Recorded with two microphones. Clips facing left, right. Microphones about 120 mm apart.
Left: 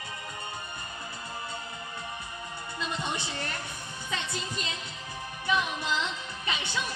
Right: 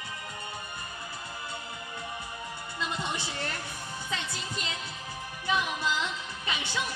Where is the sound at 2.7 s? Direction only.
20° left (ahead or behind).